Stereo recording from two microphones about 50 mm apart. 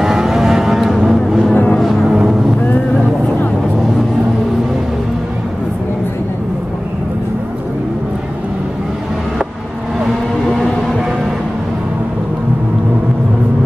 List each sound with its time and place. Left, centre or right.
0.0 s vehicle: centre
1.5 s music: left